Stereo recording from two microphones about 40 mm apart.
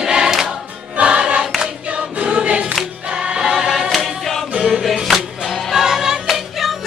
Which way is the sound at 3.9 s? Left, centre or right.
Centre.